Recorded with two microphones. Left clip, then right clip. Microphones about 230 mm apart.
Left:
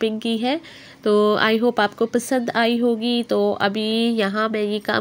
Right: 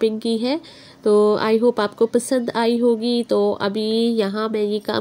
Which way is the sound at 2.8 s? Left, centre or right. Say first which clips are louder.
Right 3 dB; left.